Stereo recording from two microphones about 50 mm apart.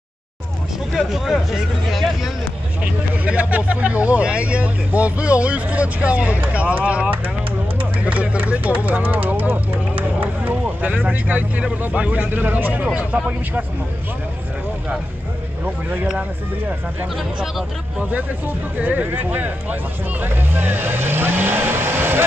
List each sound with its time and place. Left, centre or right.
0.9 s speech: centre
2.8 s speech: right
8.0 s a sound: right
8.7 s a sound: right
12.1 s speech: right
18.8 s speech: right